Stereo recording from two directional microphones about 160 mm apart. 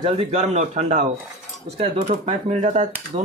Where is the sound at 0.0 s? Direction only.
40° right (ahead or behind).